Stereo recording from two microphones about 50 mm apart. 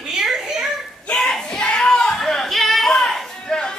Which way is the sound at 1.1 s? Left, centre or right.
Centre.